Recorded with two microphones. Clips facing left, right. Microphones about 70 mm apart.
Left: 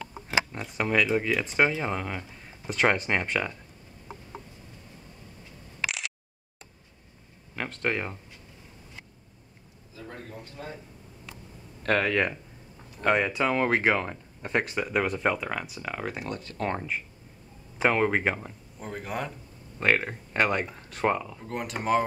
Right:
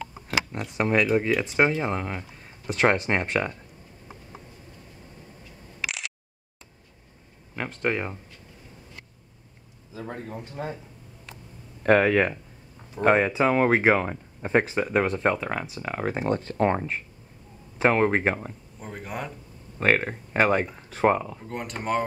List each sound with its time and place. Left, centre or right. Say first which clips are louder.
0.5 s speech: right 3 dB; centre
5.9 s a sound: even; centre
7.7 s speech: right 3 dB; centre
9.9 s speech: right 6 dB; right
11.8 s speech: right 5 dB; centre
12.9 s speech: right 4 dB; right
15.0 s speech: right 3 dB; centre
16.1 s speech: right 8 dB; right
16.7 s speech: right 3 dB; centre
20.9 s speech: right 5 dB; right
21.4 s speech: even; centre